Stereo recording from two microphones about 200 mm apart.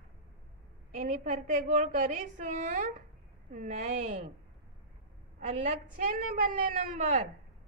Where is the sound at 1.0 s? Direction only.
40° right (ahead or behind).